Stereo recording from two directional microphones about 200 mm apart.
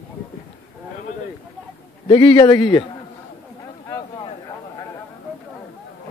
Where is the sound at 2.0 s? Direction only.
25° left (ahead or behind).